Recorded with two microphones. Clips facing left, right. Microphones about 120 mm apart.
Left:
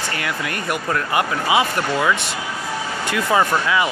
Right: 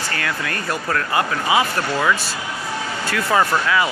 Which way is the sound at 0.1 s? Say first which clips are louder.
Right 1 dB; 20° left (ahead or behind).